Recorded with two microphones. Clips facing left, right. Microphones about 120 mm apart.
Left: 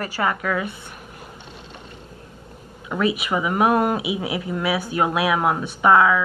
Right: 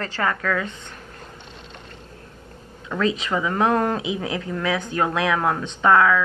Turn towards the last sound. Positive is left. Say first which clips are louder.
# left 1 dB
turn(degrees=20)  # may be behind; listen again after turning